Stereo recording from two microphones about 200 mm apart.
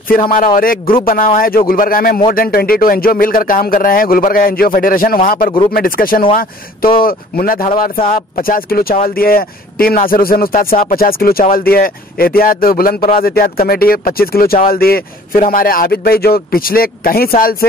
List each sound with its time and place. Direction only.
0.6 s speech: 45° left (ahead or behind)